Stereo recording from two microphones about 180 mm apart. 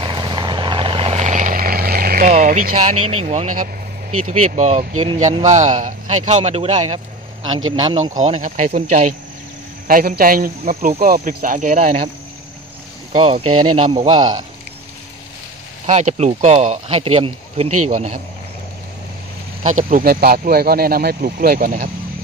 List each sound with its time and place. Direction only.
0.0 s vehicle: 25° right (ahead or behind); by 3.6 s 40° right (ahead or behind)
4.1 s speech: 40° right (ahead or behind)
13.1 s speech: 35° right (ahead or behind)
15.9 s speech: 40° right (ahead or behind)
19.6 s speech: 45° right (ahead or behind)